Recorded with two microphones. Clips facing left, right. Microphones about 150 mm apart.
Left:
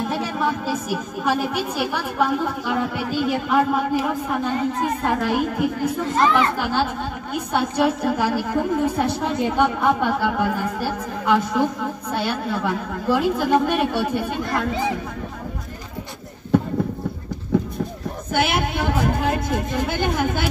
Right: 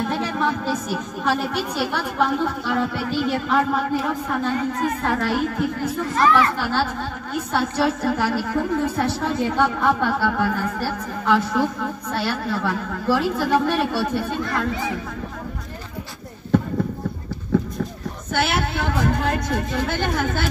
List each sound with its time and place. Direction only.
0.0 s a woman's voice: 10° left (ahead or behind)
17.5 s a sound: 15° left (ahead or behind)
18.3 s a woman's voice: 15° left (ahead or behind)